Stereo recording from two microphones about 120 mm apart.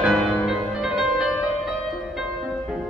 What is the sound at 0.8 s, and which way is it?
Music, 5° right (ahead or behind).